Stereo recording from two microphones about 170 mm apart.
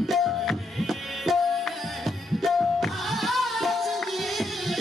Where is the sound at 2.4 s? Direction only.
Centre (ahead or behind).